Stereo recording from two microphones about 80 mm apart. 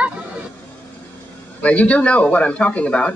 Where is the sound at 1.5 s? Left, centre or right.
Centre.